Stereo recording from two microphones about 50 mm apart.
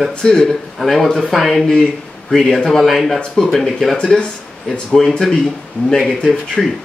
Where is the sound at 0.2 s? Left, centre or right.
Centre.